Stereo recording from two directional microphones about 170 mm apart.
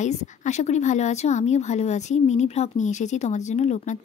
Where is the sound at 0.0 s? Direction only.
45° left (ahead or behind).